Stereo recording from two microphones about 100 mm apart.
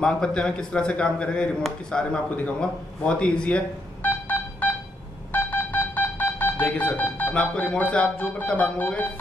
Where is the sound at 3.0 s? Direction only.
10° left (ahead or behind).